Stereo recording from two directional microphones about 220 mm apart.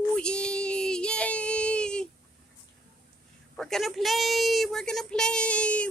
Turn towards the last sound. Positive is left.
turn(degrees=5)  # may be behind; listen again after turning